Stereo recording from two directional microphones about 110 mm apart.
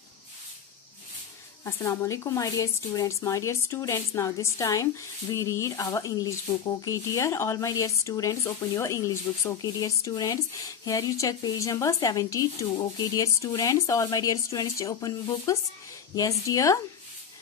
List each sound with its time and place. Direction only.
1.6 s a woman's voice: 25° left (ahead or behind)